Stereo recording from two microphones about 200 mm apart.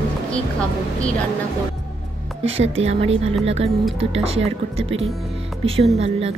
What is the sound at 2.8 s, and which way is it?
Speech, 30° right (ahead or behind).